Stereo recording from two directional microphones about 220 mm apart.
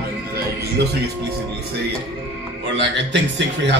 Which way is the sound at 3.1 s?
55° right (ahead or behind).